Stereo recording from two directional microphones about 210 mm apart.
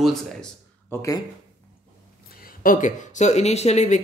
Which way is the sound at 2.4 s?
40° left (ahead or behind).